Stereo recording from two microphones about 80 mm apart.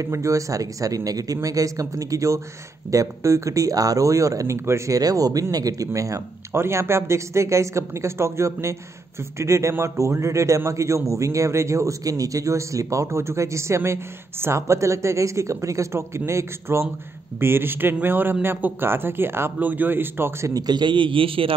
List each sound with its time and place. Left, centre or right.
0.0 s a man's voice: right
20.5 s a man's voice: right